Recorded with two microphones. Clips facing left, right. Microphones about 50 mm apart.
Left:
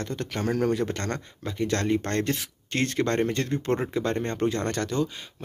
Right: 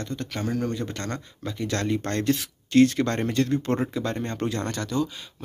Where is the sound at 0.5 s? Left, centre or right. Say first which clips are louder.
Left 4 dB; left.